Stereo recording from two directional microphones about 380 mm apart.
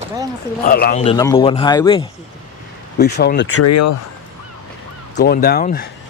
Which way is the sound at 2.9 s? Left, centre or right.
Left.